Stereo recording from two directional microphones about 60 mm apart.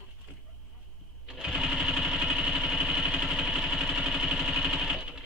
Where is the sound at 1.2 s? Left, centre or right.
Centre.